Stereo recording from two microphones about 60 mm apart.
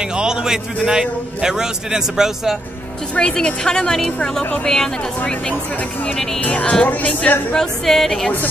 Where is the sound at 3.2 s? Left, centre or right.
Centre.